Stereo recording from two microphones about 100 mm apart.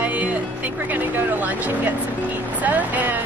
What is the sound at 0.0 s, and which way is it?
Music, 15° right (ahead or behind).